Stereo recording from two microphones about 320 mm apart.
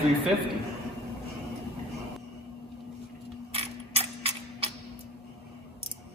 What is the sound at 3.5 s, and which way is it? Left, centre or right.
Mechanisms, centre.